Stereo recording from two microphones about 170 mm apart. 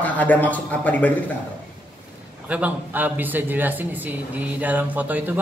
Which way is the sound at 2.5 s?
10° right (ahead or behind).